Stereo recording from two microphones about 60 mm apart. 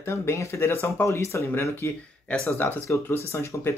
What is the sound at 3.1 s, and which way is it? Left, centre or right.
Speech, left.